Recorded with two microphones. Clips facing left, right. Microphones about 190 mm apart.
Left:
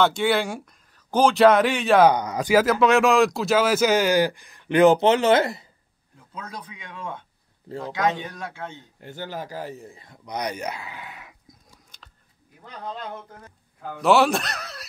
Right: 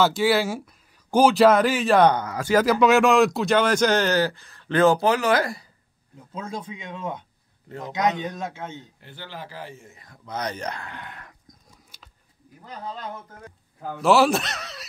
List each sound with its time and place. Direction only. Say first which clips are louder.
0.0 s speech: right 1 dB; 5° right (ahead or behind)
2.1 s speech: left 2 dB; 15° left (ahead or behind)
2.5 s speech: even; centre (ahead or behind); by 5.7 s 25° left (ahead or behind)
6.1 s speech: right 5 dB; 25° right (ahead or behind)
7.6 s a man's voice: left 3 dB; 30° left (ahead or behind)
7.9 s speech: right 1 dB; 20° right (ahead or behind)
9.0 s speech: left 9 dB; 45° left (ahead or behind)
10.2 s speech: left 1 dB; 15° left (ahead or behind)
14.0 s speech: even; centre (ahead or behind)